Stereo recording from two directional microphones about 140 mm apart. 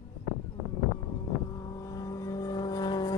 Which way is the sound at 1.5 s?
25° left (ahead or behind).